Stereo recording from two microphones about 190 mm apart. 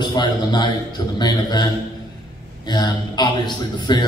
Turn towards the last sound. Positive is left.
turn(degrees=25)  # may be behind; listen again after turning